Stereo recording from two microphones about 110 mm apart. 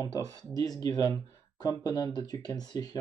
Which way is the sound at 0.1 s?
35° right (ahead or behind).